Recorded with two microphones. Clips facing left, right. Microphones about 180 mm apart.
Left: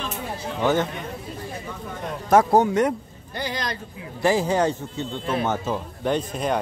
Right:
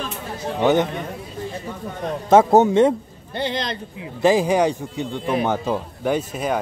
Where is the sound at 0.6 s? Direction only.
20° right (ahead or behind).